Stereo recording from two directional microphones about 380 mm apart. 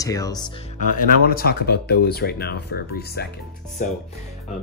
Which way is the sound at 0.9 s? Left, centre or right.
Left.